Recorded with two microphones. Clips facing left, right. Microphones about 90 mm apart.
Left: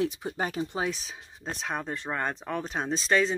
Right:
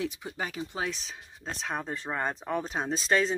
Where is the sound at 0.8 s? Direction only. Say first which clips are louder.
Left 3 dB; 10° left (ahead or behind).